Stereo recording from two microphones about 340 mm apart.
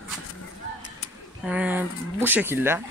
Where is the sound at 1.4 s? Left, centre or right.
Centre.